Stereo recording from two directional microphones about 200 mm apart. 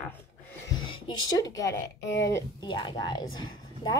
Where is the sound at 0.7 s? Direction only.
20° left (ahead or behind).